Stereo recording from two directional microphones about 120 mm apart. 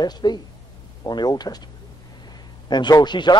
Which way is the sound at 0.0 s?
35° left (ahead or behind).